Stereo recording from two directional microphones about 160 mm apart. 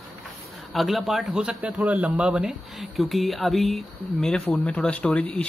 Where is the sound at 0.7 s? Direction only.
Centre (ahead or behind).